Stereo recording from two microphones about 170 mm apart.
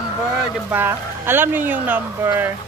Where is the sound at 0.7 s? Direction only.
10° right (ahead or behind).